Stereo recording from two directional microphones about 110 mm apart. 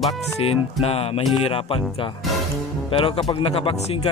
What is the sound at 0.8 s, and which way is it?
Speech, 65° left (ahead or behind).